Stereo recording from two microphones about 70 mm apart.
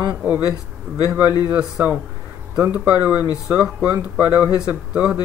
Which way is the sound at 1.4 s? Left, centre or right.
Right.